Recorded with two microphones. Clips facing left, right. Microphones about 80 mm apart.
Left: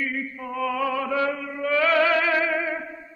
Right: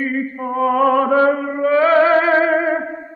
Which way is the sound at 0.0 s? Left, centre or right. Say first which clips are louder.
Right 8 dB; right.